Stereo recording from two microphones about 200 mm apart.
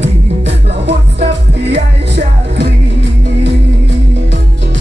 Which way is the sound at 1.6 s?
60° right (ahead or behind).